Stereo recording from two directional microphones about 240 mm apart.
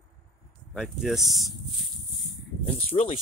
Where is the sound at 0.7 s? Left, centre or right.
Centre.